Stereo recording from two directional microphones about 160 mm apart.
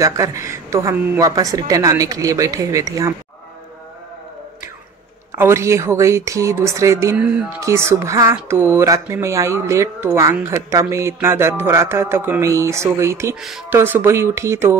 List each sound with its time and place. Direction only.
0.0 s a woman's voice: 20° right (ahead or behind)
5.3 s a woman's voice: 15° right (ahead or behind)
7.2 s speech: 10° right (ahead or behind)